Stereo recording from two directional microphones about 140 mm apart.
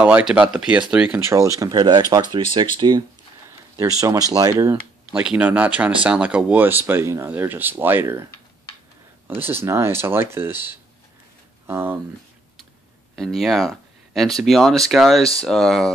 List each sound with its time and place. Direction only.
0.0 s speech: 10° right (ahead or behind)
1.6 s speech: 30° right (ahead or behind)
5.1 s speech: 5° right (ahead or behind)
9.5 s speech: 20° right (ahead or behind)
13.1 s speech: centre (ahead or behind)